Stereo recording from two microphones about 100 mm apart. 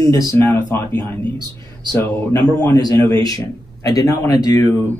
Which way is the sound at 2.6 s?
40° left (ahead or behind).